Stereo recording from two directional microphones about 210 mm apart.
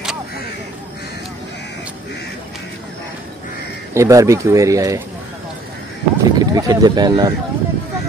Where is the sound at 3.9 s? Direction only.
15° right (ahead or behind).